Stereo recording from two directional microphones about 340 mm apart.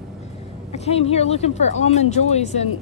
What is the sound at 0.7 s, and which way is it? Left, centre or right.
Speech, centre.